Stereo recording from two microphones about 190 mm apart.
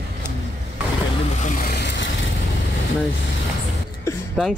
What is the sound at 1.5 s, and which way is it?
Speech, 45° left (ahead or behind).